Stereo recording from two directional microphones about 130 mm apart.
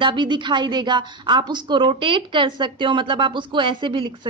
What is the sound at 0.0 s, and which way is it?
A woman's voice, 35° right (ahead or behind).